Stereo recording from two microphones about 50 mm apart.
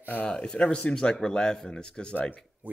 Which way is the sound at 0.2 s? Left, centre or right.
Centre.